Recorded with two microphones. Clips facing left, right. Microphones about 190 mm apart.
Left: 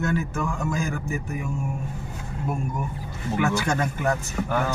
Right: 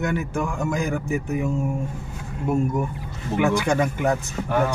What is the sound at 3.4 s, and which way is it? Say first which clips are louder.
Speech: right 4 dB; 15° right (ahead or behind).